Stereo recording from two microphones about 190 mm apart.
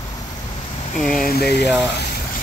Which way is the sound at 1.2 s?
55° left (ahead or behind).